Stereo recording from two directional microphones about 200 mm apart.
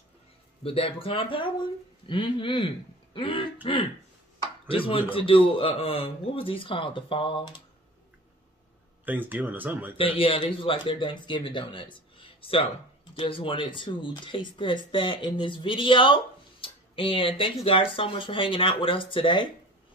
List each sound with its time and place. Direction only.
0.7 s speech: 30° left (ahead or behind)
9.0 s speech: 10° right (ahead or behind)
9.9 s speech: 25° left (ahead or behind)